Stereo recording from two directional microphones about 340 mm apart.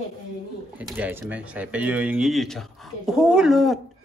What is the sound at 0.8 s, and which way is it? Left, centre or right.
Speech, centre.